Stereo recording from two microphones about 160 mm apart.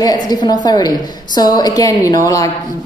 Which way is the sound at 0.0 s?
25° left (ahead or behind).